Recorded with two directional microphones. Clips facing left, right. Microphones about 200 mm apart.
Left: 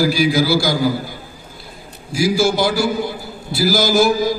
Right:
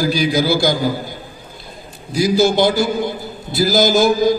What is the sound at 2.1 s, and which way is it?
A man's voice, 20° right (ahead or behind).